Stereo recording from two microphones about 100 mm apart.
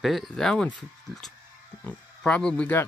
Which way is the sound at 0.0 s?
Centre (ahead or behind).